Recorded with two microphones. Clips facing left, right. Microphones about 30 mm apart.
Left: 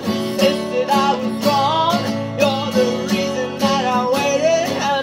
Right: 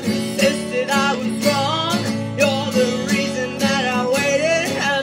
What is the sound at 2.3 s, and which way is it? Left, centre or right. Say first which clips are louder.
Music: left 1 dB; left.